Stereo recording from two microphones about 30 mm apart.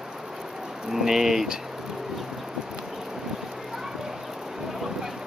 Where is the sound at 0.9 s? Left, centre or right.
Centre.